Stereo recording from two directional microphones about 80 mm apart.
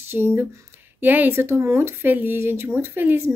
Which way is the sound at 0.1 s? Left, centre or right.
Right.